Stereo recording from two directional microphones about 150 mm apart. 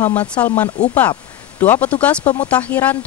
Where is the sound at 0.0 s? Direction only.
10° left (ahead or behind).